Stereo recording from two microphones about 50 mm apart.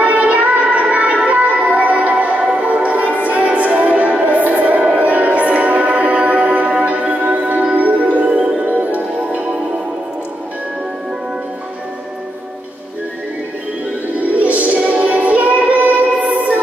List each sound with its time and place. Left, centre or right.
0.0 s music: right
14.1 s music: right